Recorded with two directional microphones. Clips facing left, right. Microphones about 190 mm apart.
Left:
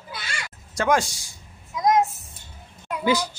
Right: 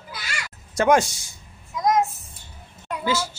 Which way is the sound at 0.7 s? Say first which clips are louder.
Right 4 dB; 20° right (ahead or behind).